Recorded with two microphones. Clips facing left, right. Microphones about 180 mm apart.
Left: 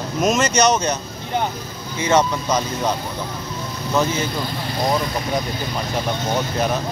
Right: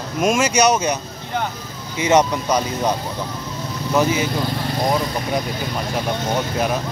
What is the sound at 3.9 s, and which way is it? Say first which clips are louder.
Speech: right 2 dB; 10° right (ahead or behind).